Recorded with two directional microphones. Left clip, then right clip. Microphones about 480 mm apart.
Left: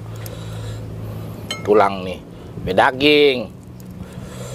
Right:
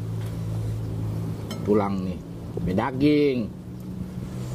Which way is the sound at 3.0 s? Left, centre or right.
Left.